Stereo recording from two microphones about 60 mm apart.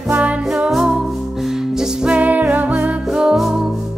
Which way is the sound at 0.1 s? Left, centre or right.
Right.